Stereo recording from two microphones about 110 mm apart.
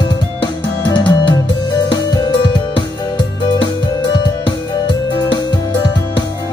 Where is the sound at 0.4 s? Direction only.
45° left (ahead or behind).